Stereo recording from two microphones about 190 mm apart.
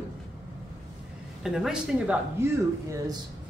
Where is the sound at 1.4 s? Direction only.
Centre (ahead or behind).